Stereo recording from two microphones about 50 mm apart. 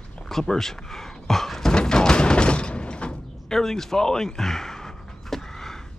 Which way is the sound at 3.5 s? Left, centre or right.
Centre.